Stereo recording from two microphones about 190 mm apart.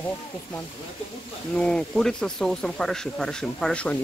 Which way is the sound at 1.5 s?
5° left (ahead or behind).